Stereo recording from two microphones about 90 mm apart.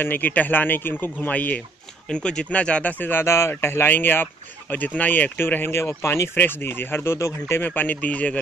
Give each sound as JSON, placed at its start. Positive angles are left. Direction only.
{"t": 0.0, "sound": "speech", "side_deg": 20}